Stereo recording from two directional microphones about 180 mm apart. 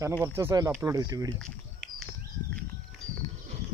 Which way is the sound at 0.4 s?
15° right (ahead or behind).